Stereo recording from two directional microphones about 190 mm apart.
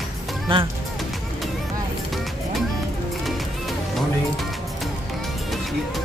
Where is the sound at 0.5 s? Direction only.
25° right (ahead or behind).